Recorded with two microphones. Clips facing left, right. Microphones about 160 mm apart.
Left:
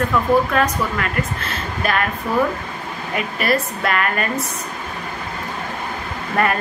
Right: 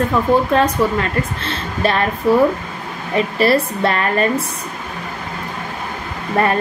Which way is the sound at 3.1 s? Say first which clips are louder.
Right 6 dB; 30° right (ahead or behind).